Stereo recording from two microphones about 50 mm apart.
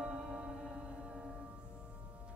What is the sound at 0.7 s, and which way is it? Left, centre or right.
Music, centre.